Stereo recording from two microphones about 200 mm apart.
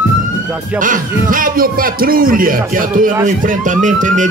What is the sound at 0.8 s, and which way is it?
Music, 40° right (ahead or behind).